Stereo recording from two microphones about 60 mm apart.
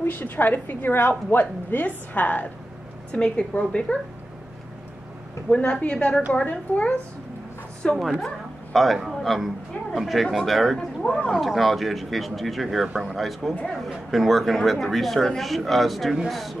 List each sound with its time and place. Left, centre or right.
0.0 s a woman's voice: left; by 4.0 s centre
5.5 s a woman's voice: left
8.7 s speech: centre